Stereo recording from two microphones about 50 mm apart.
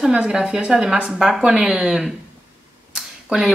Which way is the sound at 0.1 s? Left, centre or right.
Right.